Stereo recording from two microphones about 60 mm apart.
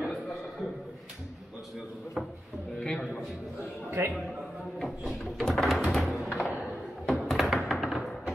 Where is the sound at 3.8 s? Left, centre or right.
Right.